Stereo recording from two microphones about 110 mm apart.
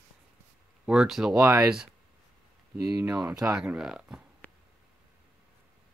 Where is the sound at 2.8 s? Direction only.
30° right (ahead or behind).